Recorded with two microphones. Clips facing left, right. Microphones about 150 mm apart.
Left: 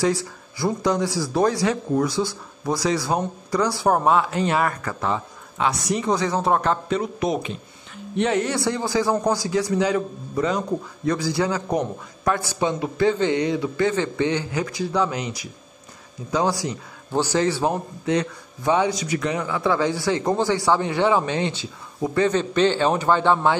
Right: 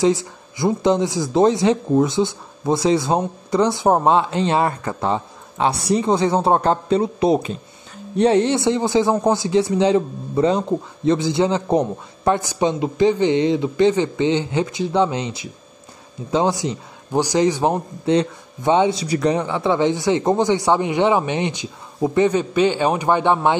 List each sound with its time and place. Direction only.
0.0 s a man's voice: 20° right (ahead or behind)
18.0 s a man's voice: 30° right (ahead or behind)